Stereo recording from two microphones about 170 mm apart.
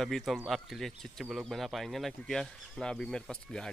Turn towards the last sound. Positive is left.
turn(degrees=5)  # may be behind; listen again after turning